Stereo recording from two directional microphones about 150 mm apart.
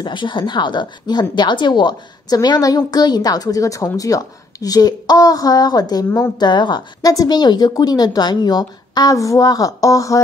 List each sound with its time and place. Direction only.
0.0 s a woman's voice: 30° left (ahead or behind)